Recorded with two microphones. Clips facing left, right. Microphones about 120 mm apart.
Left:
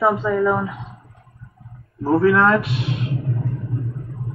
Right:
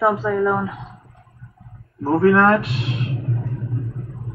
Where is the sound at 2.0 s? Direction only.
Centre (ahead or behind).